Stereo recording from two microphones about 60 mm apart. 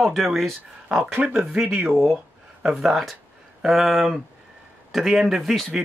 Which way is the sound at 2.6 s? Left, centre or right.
Centre.